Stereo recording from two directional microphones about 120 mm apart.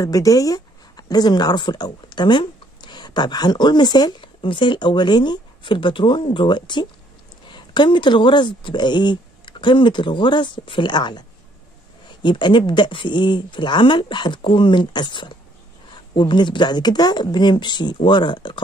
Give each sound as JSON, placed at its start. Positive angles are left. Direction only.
{"t": 0.0, "sound": "speech", "side_deg": 30}